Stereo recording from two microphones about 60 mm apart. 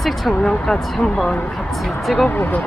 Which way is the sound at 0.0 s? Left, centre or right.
Centre.